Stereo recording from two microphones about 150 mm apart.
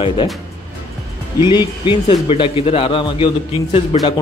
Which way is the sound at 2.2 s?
35° left (ahead or behind).